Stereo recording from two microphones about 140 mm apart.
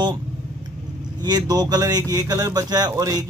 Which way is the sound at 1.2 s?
30° right (ahead or behind).